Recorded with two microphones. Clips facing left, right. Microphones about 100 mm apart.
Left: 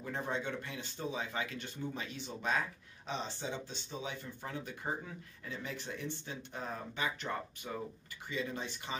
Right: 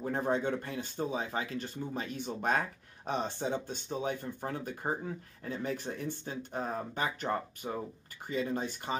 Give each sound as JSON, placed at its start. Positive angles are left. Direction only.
{"t": 0.0, "sound": "speech", "side_deg": -45}